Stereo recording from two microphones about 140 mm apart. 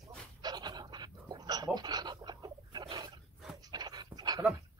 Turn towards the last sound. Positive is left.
turn(degrees=-30)  # may be behind; listen again after turning